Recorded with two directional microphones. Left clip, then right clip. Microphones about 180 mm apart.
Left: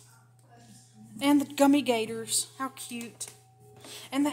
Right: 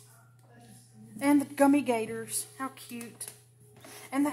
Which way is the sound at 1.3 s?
5° left (ahead or behind).